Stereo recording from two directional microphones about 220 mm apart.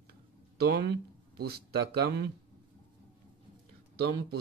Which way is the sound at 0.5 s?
45° right (ahead or behind).